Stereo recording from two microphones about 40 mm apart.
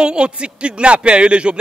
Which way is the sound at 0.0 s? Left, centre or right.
Right.